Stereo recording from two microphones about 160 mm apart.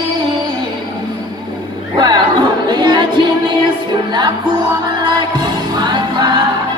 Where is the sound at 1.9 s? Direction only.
30° right (ahead or behind).